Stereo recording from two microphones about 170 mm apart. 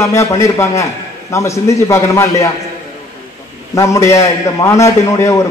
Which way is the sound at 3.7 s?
15° left (ahead or behind).